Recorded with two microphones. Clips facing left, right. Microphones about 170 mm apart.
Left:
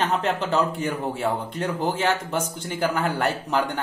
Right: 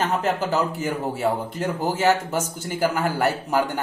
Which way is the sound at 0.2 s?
5° right (ahead or behind).